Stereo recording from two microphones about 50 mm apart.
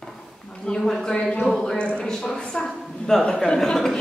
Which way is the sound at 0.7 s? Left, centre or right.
Centre.